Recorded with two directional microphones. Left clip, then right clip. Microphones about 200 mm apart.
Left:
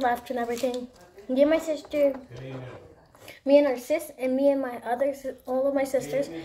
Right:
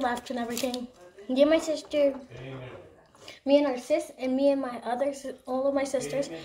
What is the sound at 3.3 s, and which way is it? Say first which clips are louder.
A woman's voice: left 3 dB; 5° left (ahead or behind).